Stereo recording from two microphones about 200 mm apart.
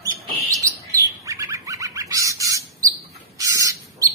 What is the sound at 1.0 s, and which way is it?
Bird, 15° right (ahead or behind).